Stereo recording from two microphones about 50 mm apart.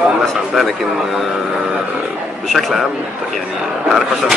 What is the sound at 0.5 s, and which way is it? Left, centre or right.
Speech, centre.